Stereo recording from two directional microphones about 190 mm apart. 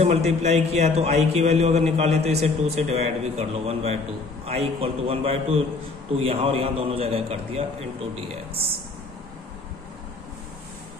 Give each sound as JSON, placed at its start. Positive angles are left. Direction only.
{"t": 0.0, "sound": "a man's voice", "side_deg": -35}